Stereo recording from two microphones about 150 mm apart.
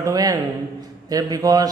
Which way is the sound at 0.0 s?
25° right (ahead or behind).